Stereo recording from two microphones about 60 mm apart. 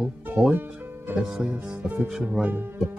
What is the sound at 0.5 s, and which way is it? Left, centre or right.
Speech, right.